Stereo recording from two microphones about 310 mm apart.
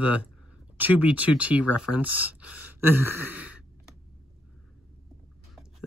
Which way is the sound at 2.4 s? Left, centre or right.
Left.